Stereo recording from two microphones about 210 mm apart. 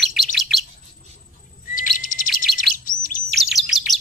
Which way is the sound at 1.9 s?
40° left (ahead or behind).